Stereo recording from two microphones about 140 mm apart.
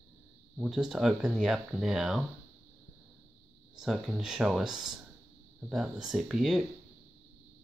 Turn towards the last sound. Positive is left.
turn(degrees=0)  # may be behind; listen again after turning